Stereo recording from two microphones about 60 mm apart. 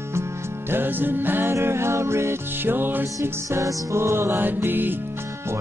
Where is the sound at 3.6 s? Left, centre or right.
Right.